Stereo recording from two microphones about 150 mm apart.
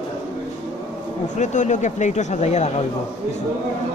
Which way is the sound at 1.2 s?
55° left (ahead or behind).